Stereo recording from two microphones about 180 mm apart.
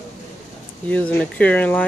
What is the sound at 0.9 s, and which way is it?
Speech, 5° left (ahead or behind).